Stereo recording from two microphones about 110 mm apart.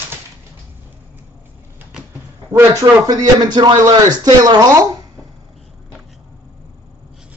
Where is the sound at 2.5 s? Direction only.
30° right (ahead or behind).